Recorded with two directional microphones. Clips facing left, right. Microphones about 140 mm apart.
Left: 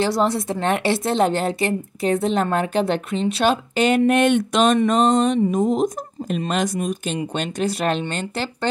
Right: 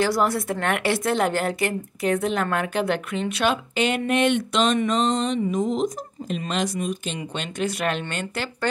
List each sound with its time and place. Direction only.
0.0 s speech: 25° left (ahead or behind); by 7.2 s 45° left (ahead or behind)
7.3 s speech: 35° left (ahead or behind)